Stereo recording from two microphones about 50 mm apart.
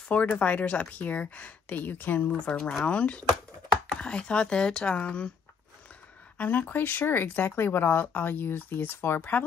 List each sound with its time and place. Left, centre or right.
0.1 s speech: left
6.3 s speech: left